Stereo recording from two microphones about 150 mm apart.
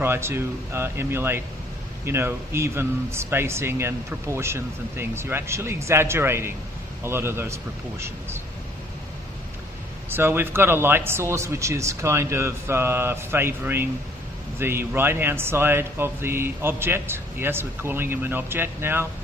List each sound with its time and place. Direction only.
0.0 s speech: 15° right (ahead or behind)
10.0 s speech: 15° right (ahead or behind)